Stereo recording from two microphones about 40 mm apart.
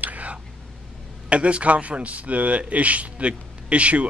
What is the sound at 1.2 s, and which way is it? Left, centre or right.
A man's voice, right.